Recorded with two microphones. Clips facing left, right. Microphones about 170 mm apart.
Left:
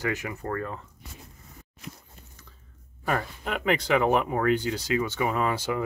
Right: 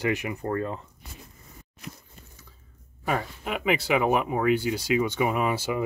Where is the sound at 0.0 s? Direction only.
15° right (ahead or behind).